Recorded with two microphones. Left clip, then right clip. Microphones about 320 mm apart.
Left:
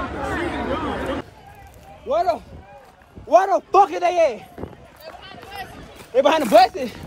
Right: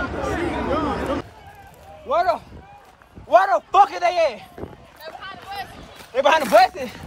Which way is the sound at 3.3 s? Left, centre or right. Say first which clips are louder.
Even; centre.